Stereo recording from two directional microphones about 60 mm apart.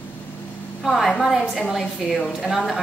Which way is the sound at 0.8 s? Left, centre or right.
Centre.